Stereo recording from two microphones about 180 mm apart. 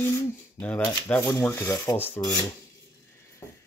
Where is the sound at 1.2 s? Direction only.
20° left (ahead or behind).